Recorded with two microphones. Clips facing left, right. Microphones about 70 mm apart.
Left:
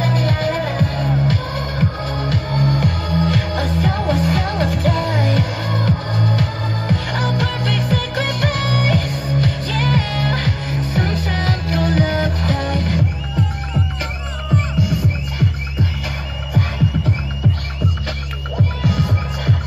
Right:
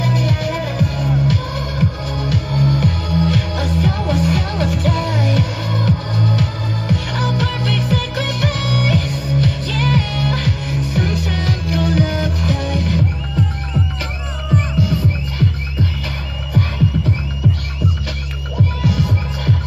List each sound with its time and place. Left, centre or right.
0.0 s music: left
14.8 s music: centre
18.8 s music: left